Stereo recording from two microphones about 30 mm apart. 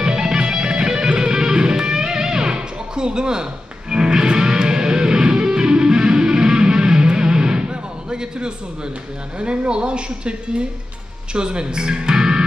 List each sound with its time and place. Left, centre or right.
0.0 s music: right
9.4 s speech: right
11.3 s speech: right